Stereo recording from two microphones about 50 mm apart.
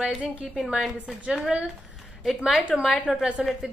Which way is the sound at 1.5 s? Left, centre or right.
Centre.